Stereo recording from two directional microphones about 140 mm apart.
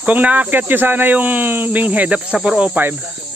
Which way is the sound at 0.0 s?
10° right (ahead or behind).